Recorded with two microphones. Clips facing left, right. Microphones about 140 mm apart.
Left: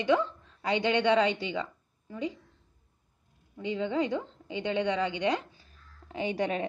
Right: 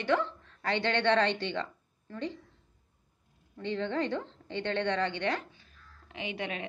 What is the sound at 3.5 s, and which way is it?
A woman's voice, 10° left (ahead or behind).